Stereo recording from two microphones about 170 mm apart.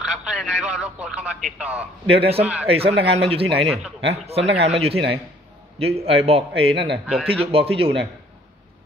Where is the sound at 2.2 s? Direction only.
35° right (ahead or behind).